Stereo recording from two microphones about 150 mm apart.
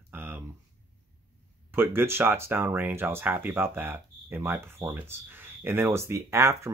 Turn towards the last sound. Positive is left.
turn(degrees=-20)  # may be behind; listen again after turning